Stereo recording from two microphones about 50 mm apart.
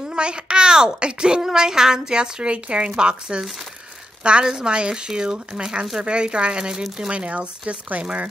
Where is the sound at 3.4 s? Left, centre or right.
Centre.